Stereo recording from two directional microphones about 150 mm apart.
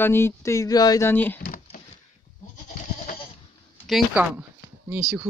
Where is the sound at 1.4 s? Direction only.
75° left (ahead or behind).